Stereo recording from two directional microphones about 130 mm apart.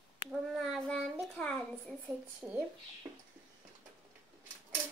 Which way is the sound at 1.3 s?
5° left (ahead or behind).